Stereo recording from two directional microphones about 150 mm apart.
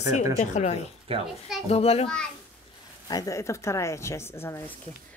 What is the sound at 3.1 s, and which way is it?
A woman's voice, 25° left (ahead or behind).